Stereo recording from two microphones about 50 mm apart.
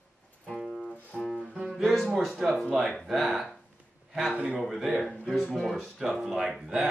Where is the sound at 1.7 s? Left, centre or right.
Centre.